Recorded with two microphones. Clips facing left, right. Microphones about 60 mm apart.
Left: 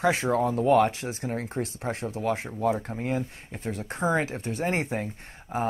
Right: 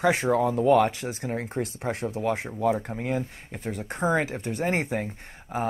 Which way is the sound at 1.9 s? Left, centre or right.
Right.